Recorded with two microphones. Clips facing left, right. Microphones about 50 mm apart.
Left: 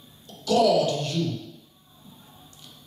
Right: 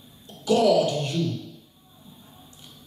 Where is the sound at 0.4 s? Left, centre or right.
Centre.